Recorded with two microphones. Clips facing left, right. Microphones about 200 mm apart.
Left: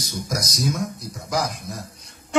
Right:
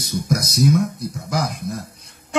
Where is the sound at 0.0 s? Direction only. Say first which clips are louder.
Right 6 dB; 60° right (ahead or behind).